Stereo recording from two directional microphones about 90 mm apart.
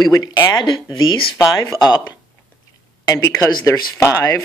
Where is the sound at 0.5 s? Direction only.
55° left (ahead or behind).